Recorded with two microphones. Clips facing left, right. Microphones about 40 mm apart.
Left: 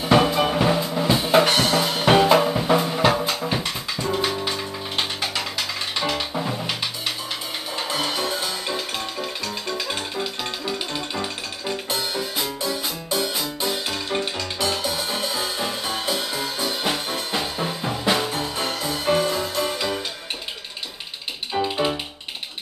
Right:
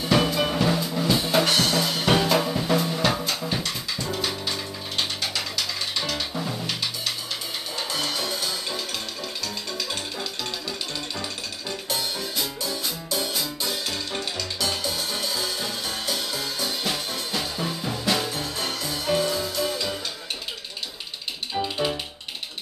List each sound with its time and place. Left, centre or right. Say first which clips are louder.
0.0 s drum kit: left 4 dB; centre
7.9 s music: left 4 dB; left
21.5 s music: left 4 dB; centre